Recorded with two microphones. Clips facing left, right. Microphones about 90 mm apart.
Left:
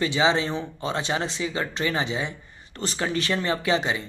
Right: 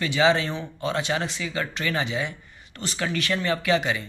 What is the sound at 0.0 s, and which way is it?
Speech, 25° left (ahead or behind).